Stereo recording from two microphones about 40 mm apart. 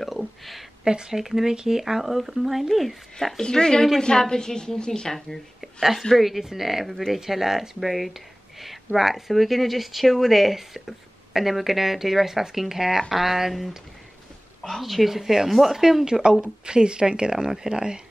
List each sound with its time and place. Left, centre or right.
0.4 s a sound: centre
0.8 s speech: centre
3.2 s a woman's voice: centre
5.1 s speech: centre
14.8 s speech: centre; by 18.0 s right